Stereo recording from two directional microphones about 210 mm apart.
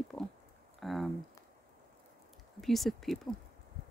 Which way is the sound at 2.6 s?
Centre (ahead or behind).